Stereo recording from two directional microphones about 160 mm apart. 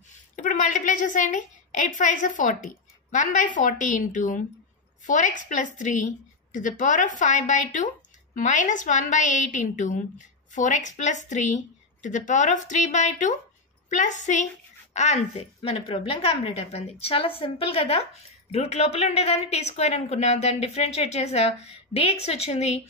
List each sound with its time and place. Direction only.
0.4 s a woman's voice: 55° left (ahead or behind)